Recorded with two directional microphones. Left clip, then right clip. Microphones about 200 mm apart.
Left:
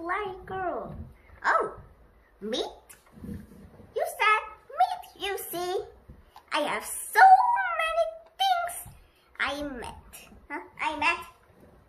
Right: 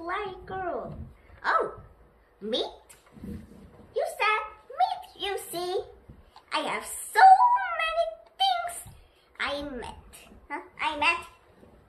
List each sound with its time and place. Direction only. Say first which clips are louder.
0.0 s a child's voice: left 1 dB; 10° left (ahead or behind)
1.4 s dog: left 1 dB; 15° left (ahead or behind)
3.9 s a sound: left 2 dB; 15° left (ahead or behind)
9.4 s a child's voice: left 1 dB; 15° left (ahead or behind)